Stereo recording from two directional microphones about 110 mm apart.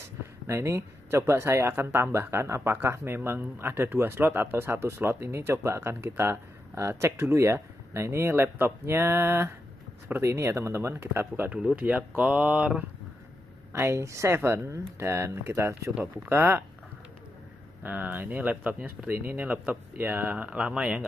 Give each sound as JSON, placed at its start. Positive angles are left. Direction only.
{"t": 0.5, "sound": "speech", "side_deg": -25}
{"t": 13.7, "sound": "speech", "side_deg": -25}
{"t": 17.8, "sound": "speech", "side_deg": -15}